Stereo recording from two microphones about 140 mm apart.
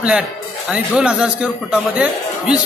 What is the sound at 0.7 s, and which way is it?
A man's voice, 10° right (ahead or behind).